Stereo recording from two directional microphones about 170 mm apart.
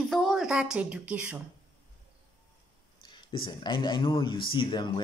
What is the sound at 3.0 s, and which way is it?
Speech, 30° left (ahead or behind).